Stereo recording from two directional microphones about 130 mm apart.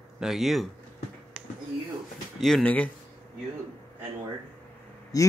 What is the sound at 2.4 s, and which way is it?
Speech, centre (ahead or behind).